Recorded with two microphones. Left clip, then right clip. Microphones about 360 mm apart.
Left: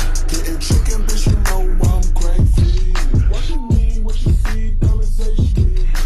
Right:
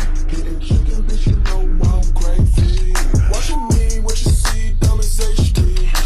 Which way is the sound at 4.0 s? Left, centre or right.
Right.